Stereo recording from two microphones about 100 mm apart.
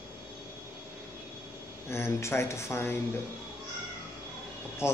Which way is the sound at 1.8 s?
25° left (ahead or behind).